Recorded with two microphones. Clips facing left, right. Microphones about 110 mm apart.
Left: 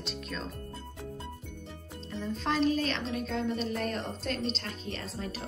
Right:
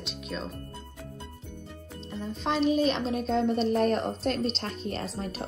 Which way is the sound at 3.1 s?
30° right (ahead or behind).